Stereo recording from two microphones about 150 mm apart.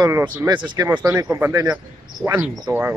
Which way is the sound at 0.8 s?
15° right (ahead or behind).